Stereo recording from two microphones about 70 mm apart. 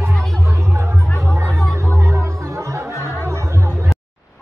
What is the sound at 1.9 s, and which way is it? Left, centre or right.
Music, right.